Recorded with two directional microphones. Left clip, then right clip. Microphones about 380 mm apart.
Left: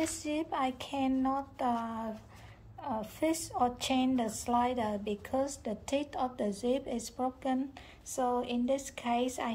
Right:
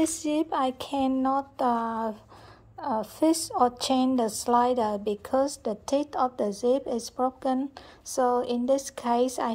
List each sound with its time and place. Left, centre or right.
0.0 s speech: centre